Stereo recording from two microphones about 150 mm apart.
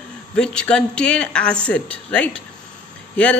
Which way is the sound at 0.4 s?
5° left (ahead or behind).